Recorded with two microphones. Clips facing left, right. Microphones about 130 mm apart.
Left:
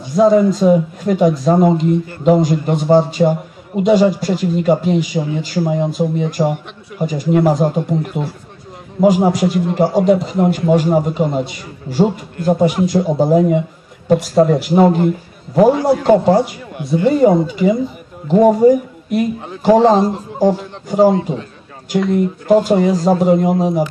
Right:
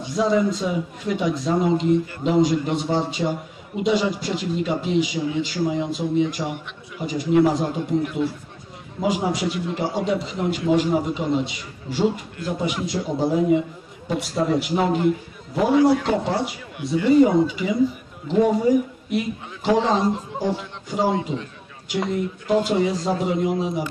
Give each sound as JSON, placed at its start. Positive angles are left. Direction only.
{"t": 0.1, "sound": "a man's voice", "side_deg": 45}